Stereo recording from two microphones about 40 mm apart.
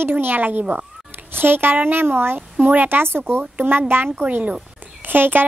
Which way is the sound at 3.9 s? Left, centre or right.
Right.